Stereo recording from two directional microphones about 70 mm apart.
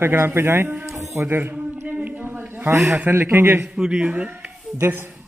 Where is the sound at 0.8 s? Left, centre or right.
Right.